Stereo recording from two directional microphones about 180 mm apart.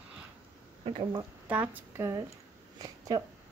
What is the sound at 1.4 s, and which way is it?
Speech, 10° right (ahead or behind).